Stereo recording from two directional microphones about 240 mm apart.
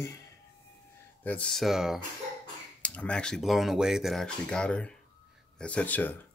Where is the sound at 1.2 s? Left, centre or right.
Centre.